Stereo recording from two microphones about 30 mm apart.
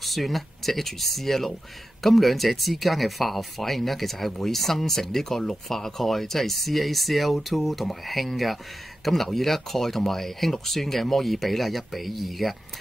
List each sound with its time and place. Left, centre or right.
0.0 s speech: centre